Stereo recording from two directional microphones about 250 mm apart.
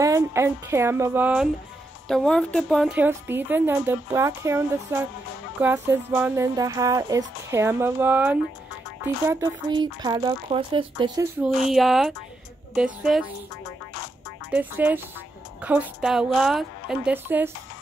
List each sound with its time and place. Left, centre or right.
0.0 s a woman's voice: centre
2.9 s speech: centre
11.4 s a woman's voice: centre
14.5 s a woman's voice: centre